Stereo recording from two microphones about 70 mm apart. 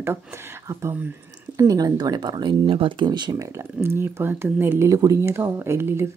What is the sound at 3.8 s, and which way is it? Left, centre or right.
Speech, right.